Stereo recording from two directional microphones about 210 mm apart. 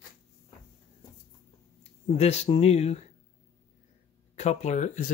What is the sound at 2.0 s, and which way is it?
Speech, 30° left (ahead or behind).